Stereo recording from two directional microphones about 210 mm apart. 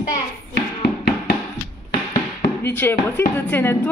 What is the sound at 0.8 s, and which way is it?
Music, 50° left (ahead or behind).